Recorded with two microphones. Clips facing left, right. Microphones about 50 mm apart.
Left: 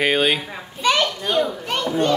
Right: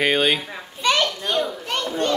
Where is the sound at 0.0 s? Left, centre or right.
Centre.